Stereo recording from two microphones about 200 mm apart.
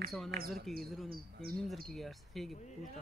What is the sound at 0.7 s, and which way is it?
Speech, centre (ahead or behind).